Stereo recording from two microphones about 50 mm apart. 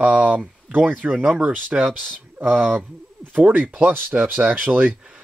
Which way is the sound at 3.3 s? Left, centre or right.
Right.